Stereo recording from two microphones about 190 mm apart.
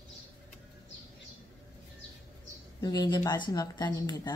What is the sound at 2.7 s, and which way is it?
Speech, 20° left (ahead or behind).